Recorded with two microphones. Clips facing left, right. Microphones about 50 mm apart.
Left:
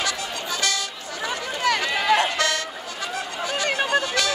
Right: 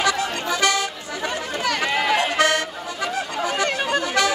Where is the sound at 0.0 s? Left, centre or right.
Right.